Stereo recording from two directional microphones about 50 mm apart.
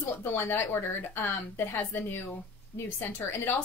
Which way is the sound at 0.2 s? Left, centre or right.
Left.